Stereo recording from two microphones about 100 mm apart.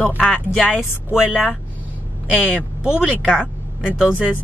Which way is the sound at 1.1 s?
10° right (ahead or behind).